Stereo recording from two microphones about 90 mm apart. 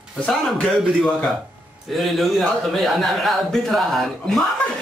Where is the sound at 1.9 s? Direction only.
Centre (ahead or behind).